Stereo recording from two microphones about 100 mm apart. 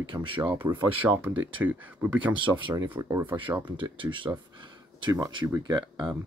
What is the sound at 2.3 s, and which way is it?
Speech, 55° right (ahead or behind).